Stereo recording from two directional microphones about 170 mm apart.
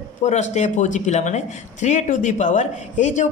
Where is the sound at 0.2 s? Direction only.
45° left (ahead or behind).